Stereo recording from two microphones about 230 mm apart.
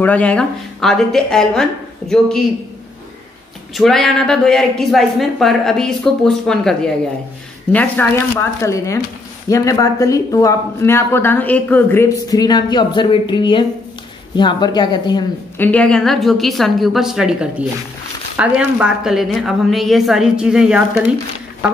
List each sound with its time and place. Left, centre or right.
0.0 s a woman's voice: centre
3.7 s a woman's voice: centre